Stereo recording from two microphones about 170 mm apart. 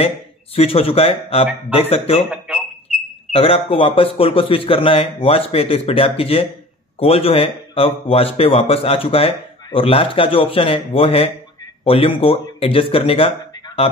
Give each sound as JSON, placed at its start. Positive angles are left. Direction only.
{"t": 0.6, "sound": "speech", "side_deg": 35}
{"t": 2.3, "sound": "a sound", "side_deg": -5}
{"t": 3.3, "sound": "speech", "side_deg": 35}